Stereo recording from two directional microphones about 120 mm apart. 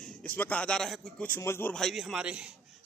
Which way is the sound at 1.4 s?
20° left (ahead or behind).